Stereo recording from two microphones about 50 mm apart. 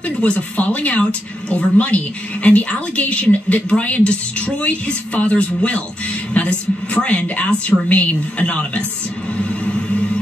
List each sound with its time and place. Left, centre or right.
0.2 s speech: left